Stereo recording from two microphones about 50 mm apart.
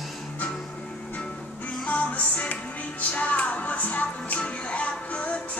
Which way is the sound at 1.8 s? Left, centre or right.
Left.